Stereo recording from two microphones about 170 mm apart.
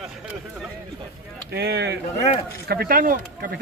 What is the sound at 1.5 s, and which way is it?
Speech, 75° right (ahead or behind).